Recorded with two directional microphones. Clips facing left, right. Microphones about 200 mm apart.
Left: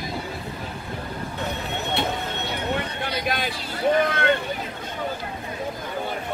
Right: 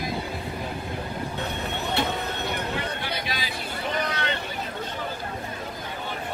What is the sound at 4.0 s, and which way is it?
Vehicle, 50° left (ahead or behind).